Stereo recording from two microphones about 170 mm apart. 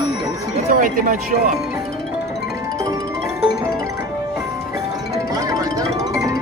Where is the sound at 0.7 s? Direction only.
55° right (ahead or behind).